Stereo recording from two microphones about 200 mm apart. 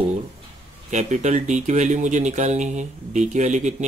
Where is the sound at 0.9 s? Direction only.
35° right (ahead or behind).